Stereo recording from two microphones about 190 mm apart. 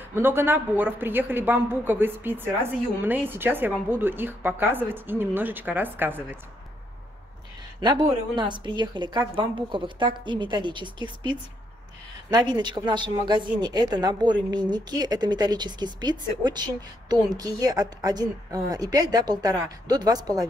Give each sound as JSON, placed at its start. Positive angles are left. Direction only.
{"t": 0.1, "sound": "a woman's voice", "side_deg": -10}
{"t": 7.8, "sound": "a woman's voice", "side_deg": -25}